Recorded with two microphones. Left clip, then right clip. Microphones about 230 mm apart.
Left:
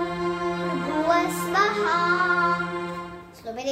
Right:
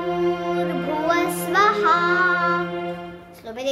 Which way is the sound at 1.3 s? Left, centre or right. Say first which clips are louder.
Right 4 dB; right.